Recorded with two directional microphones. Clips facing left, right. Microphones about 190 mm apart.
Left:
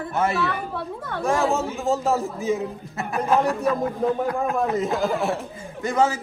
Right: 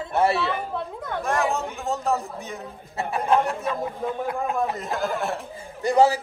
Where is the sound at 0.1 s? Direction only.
35° right (ahead or behind).